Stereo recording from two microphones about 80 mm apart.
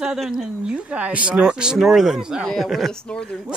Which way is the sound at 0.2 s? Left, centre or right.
Centre.